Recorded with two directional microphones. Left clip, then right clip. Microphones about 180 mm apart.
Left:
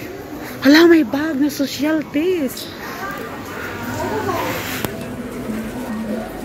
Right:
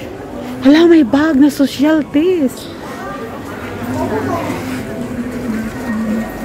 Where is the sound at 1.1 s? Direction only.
35° right (ahead or behind).